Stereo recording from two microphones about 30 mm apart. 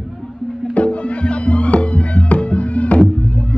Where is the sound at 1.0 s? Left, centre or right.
Left.